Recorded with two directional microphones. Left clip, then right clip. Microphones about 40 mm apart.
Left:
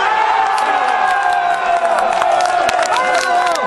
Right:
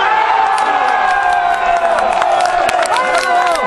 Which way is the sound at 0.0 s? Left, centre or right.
Centre.